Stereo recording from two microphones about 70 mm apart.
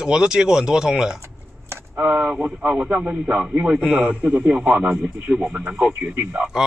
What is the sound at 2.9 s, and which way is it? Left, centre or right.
A man's voice, centre.